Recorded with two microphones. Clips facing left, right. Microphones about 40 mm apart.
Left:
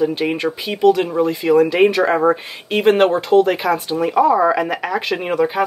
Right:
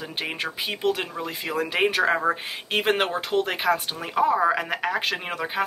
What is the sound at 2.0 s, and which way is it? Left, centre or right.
Speech, centre.